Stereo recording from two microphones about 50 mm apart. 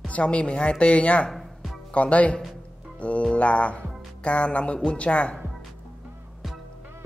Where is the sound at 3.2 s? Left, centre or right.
Left.